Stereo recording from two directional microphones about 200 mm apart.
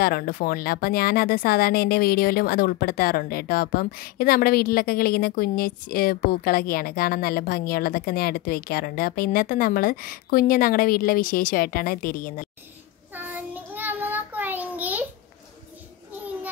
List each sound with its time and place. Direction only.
0.0 s speech: 50° left (ahead or behind)
13.1 s child singing: 10° right (ahead or behind)